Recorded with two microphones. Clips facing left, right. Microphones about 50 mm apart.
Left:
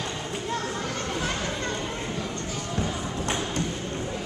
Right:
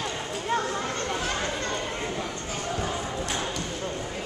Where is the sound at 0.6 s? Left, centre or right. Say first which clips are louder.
Right 2 dB; centre.